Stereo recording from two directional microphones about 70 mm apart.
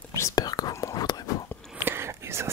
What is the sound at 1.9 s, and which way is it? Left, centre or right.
Whispering, right.